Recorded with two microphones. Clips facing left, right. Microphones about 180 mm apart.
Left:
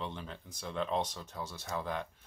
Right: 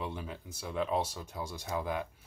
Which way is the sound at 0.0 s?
10° right (ahead or behind).